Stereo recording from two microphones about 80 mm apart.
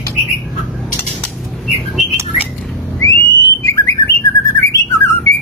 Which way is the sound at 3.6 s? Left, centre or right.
Left.